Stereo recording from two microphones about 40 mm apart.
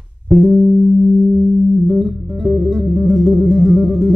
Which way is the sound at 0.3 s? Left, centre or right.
Centre.